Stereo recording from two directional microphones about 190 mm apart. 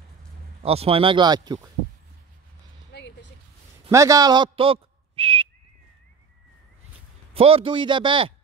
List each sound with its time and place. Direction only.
0.6 s speech: 30° right (ahead or behind)
2.9 s a sound: 65° left (ahead or behind)
3.9 s a man's voice: 15° right (ahead or behind)
7.3 s speech: 30° right (ahead or behind)